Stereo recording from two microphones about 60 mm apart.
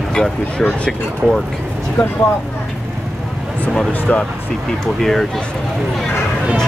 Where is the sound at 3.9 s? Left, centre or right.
Left.